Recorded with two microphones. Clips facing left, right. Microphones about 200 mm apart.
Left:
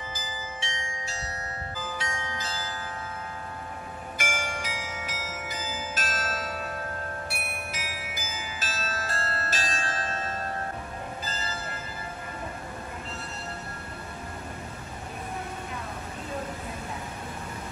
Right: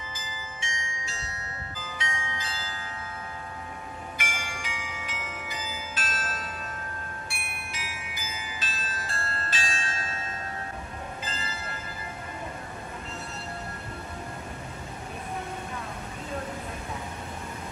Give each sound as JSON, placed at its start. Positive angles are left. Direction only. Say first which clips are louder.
{"t": 0.1, "sound": "marimba", "louder": "left 4 dB", "side_deg": 35}
{"t": 1.8, "sound": "music", "louder": "left 2 dB", "side_deg": 50}
{"t": 4.2, "sound": "bell", "louder": "left 8 dB", "side_deg": 45}
{"t": 7.2, "sound": "music", "louder": "left 5 dB", "side_deg": 40}